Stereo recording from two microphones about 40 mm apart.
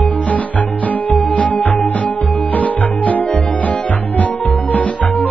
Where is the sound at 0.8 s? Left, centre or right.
Left.